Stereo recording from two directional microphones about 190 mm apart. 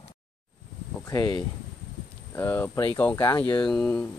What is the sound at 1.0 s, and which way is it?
Speech, 20° left (ahead or behind).